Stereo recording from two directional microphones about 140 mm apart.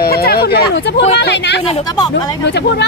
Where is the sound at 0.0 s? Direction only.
90° left.